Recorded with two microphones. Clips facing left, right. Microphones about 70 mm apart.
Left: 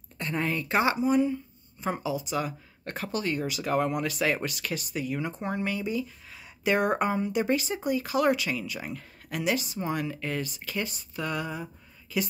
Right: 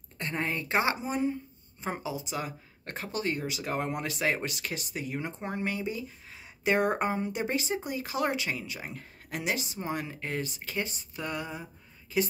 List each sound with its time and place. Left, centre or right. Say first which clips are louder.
0.2 s a woman's voice: left 3 dB; right